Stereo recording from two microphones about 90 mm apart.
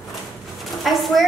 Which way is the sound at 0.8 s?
Centre (ahead or behind).